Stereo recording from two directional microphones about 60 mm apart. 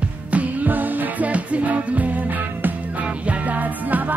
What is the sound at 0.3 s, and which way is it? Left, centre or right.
Music, right.